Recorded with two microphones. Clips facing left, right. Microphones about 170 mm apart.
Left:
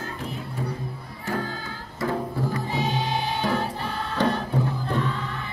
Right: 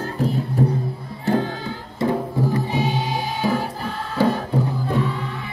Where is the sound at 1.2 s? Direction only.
25° right (ahead or behind).